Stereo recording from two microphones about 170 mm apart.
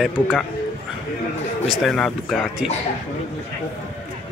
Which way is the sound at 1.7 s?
Centre (ahead or behind).